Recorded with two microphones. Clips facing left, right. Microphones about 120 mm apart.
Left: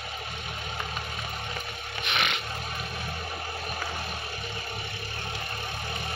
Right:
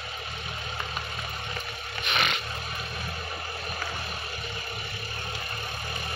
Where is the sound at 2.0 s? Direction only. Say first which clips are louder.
Right 1 dB; 15° left (ahead or behind).